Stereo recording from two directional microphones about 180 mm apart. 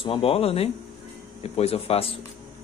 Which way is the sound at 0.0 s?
30° left (ahead or behind).